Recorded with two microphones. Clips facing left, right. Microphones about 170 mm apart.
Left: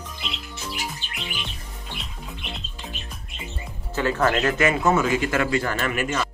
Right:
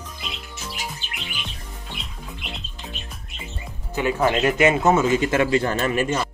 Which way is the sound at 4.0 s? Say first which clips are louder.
Right 1 dB; 15° right (ahead or behind).